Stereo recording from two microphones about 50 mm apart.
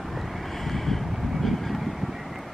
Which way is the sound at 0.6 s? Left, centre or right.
Centre.